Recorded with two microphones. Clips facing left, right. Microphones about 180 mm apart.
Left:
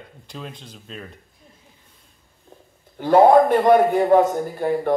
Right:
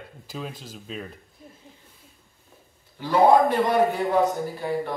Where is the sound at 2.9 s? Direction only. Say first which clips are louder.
Left 5 dB; 50° left (ahead or behind).